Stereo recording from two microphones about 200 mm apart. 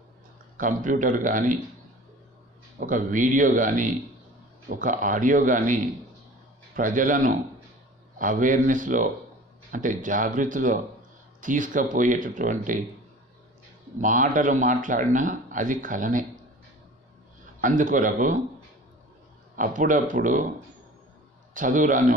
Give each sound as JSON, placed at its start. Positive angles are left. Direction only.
{"t": 0.6, "sound": "speech", "side_deg": -40}
{"t": 2.8, "sound": "speech", "side_deg": -40}
{"t": 14.0, "sound": "speech", "side_deg": -40}
{"t": 17.6, "sound": "speech", "side_deg": -40}
{"t": 19.5, "sound": "speech", "side_deg": -40}
{"t": 21.5, "sound": "speech", "side_deg": -40}